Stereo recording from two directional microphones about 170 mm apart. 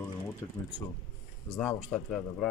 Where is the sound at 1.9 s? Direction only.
5° left (ahead or behind).